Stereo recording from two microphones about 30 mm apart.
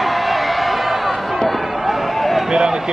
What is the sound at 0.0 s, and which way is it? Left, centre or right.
Music, centre.